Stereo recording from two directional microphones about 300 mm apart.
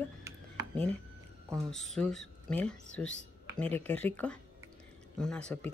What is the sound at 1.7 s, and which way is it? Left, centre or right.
Speech, centre.